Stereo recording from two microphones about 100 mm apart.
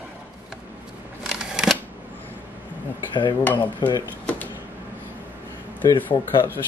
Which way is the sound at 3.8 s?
50° left (ahead or behind).